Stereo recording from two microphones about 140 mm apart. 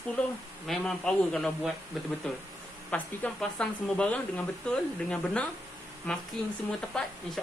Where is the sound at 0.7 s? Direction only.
5° left (ahead or behind).